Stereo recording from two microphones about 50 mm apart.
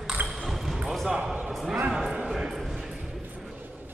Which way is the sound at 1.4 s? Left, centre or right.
Centre.